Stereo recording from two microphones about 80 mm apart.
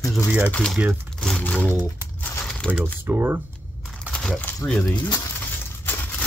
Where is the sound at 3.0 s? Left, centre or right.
Right.